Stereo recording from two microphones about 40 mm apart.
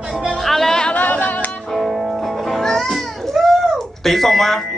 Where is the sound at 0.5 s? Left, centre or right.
Centre.